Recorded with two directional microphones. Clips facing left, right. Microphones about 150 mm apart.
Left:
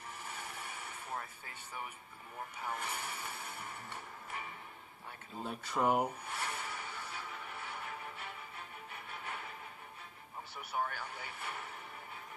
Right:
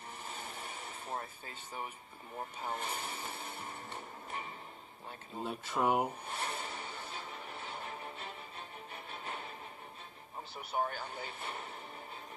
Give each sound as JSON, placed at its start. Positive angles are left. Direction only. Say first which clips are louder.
{"t": 0.2, "sound": "a sound", "louder": "right 2 dB", "side_deg": -25}
{"t": 2.6, "sound": "speech", "louder": "right 1 dB", "side_deg": -25}
{"t": 5.4, "sound": "speech", "louder": "right 1 dB", "side_deg": 0}
{"t": 6.2, "sound": "music", "louder": "right 1 dB", "side_deg": -25}
{"t": 10.5, "sound": "speech", "louder": "right 2 dB", "side_deg": -25}